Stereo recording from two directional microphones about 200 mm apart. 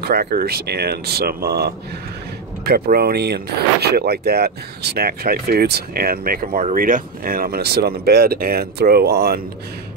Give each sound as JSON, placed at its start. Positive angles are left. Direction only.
{"t": 0.0, "sound": "speech", "side_deg": -50}